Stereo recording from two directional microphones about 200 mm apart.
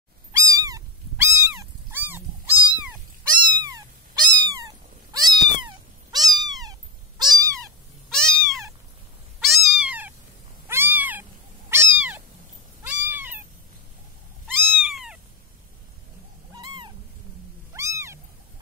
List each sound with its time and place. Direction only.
0.3 s cat: 15° right (ahead or behind)
8.1 s cat: centre (ahead or behind)
14.5 s cat: centre (ahead or behind)
16.5 s cat: 25° right (ahead or behind)